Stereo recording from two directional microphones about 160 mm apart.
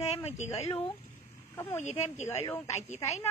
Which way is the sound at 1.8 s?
45° left (ahead or behind).